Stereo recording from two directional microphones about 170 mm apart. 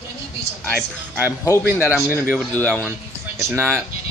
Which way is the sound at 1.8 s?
10° left (ahead or behind).